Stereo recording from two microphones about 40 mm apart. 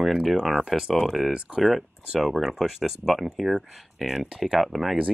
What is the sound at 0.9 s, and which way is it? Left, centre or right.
Speech, centre.